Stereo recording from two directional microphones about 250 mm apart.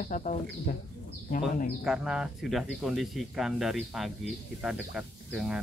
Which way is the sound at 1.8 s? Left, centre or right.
Centre.